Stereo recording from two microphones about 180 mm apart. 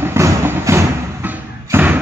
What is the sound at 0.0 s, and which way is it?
Thump, 15° right (ahead or behind).